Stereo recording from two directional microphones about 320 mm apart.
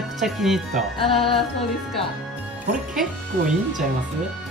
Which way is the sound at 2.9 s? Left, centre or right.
Centre.